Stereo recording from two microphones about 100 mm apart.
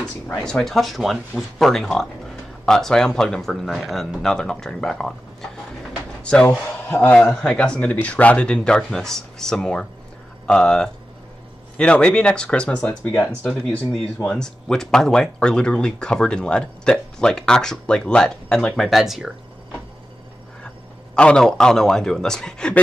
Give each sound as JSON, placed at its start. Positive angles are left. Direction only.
{"t": 0.5, "sound": "speech", "side_deg": 5}
{"t": 6.4, "sound": "a man's voice", "side_deg": 25}
{"t": 7.1, "sound": "speech", "side_deg": 10}
{"t": 13.5, "sound": "speech", "side_deg": 10}
{"t": 18.9, "sound": "speech", "side_deg": 0}
{"t": 20.6, "sound": "a man's voice", "side_deg": 10}